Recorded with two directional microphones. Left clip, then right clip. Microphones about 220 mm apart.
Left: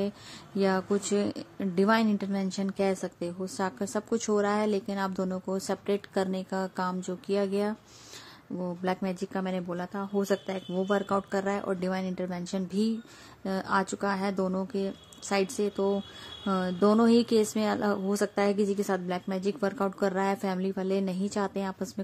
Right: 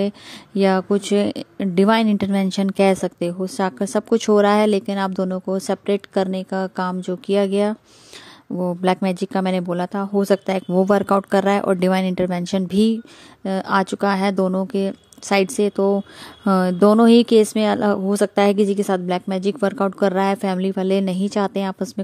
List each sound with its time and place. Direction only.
0.6 s speech: 35° right (ahead or behind)